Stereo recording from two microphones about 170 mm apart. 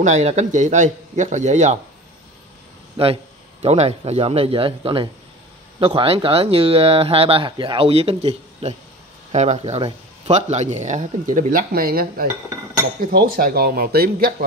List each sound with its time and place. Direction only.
0.0 s speech: 40° right (ahead or behind)
3.0 s speech: 30° right (ahead or behind); by 14.3 s 65° right (ahead or behind)